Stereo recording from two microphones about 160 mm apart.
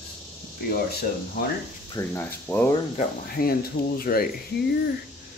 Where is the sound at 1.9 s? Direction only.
15° left (ahead or behind).